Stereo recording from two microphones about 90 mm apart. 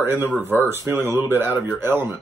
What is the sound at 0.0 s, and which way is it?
Speech, 20° right (ahead or behind).